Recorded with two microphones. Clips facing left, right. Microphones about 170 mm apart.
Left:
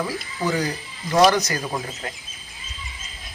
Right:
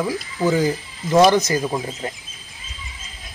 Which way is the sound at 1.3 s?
25° right (ahead or behind).